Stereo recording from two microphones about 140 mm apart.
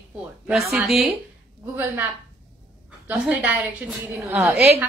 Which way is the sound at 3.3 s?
10° right (ahead or behind).